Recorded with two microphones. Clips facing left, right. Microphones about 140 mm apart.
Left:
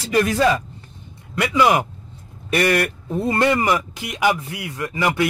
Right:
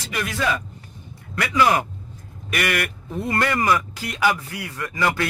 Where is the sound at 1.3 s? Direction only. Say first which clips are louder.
Left 2 dB; 20° left (ahead or behind).